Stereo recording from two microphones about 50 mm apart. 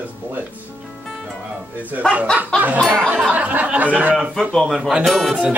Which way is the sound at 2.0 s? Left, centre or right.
Centre.